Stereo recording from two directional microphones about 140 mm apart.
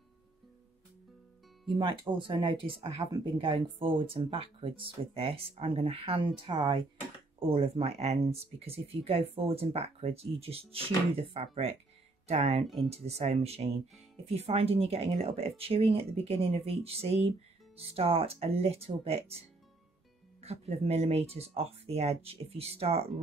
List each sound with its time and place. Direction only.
1.7 s speech: 35° right (ahead or behind)
3.1 s speech: 30° right (ahead or behind); by 19.2 s 45° right (ahead or behind)
20.3 s speech: 50° right (ahead or behind)